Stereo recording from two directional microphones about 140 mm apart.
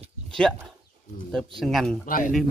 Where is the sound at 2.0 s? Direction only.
80° left.